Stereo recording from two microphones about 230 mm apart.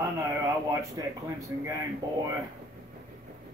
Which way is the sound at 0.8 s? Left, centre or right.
Centre.